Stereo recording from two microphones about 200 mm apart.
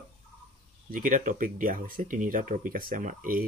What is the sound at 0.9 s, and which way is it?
Speech, 40° right (ahead or behind).